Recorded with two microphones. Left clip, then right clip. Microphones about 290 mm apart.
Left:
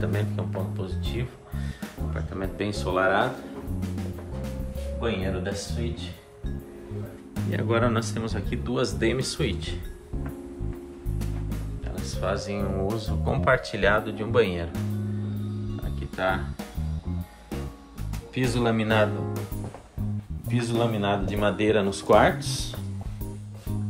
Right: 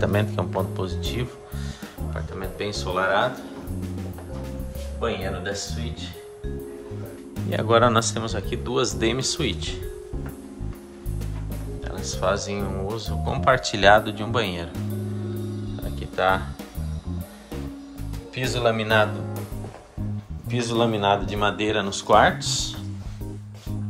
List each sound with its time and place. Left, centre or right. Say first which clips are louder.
0.0 s speech: right 7 dB; right
2.1 s speech: even; centre
7.5 s speech: right 7 dB; centre
12.2 s speech: right 4 dB; centre
16.2 s speech: right 5 dB; centre
18.3 s speech: right 3 dB; centre
20.4 s speech: right 3 dB; centre